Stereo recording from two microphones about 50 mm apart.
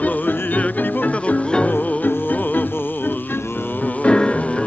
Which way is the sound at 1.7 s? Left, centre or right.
Left.